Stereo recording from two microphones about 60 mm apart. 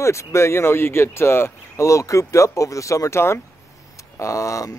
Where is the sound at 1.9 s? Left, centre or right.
Left.